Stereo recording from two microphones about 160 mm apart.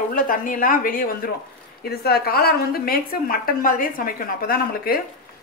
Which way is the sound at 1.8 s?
80° left.